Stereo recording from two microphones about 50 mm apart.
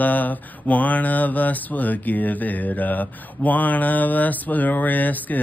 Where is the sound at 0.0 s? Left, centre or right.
Left.